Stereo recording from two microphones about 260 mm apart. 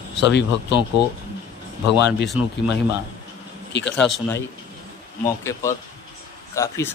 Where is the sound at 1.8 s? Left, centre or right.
Left.